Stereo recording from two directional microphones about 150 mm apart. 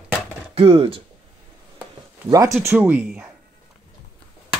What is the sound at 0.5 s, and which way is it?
Speech, 40° right (ahead or behind).